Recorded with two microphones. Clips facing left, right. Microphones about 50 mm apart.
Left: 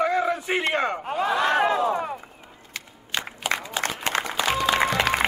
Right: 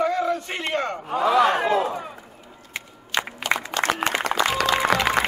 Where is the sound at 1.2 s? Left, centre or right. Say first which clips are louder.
Right 6 dB; right.